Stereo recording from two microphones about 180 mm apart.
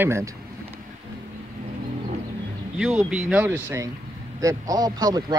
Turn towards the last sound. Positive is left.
turn(degrees=-20)  # may be behind; listen again after turning